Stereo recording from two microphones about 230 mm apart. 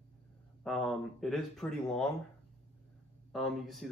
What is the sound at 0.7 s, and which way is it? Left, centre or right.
Speech, centre.